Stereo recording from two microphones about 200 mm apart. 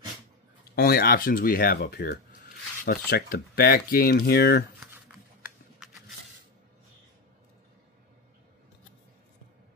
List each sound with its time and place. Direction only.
0.7 s speech: 50° left (ahead or behind)